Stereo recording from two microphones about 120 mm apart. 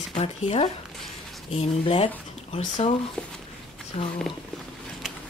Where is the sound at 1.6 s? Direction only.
55° left (ahead or behind).